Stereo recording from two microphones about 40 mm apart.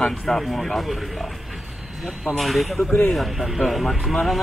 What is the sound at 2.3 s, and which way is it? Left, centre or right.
Speech, centre.